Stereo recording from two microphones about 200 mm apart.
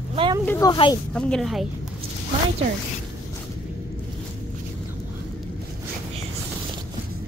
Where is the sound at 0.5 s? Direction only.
20° left (ahead or behind).